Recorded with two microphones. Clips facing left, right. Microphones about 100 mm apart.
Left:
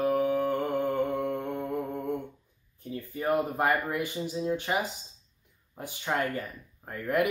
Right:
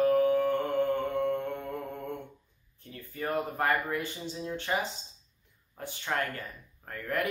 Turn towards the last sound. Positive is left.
turn(degrees=15)  # may be behind; listen again after turning